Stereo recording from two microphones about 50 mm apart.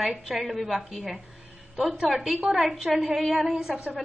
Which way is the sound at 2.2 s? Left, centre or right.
Centre.